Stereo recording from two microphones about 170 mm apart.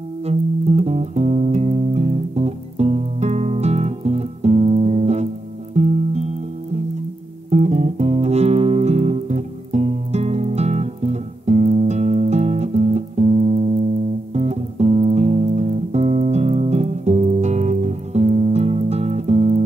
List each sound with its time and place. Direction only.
0.3 s music: 40° right (ahead or behind)